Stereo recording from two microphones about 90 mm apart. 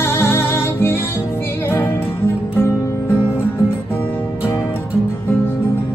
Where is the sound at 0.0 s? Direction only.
25° left (ahead or behind).